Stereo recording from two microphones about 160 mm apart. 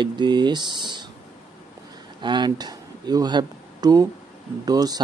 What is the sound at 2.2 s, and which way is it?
Speech, 30° right (ahead or behind).